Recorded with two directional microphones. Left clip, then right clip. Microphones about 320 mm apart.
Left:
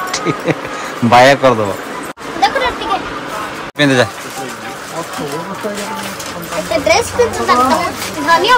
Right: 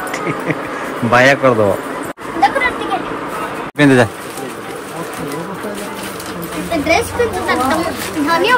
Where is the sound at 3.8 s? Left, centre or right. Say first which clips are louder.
Right 1 dB; centre.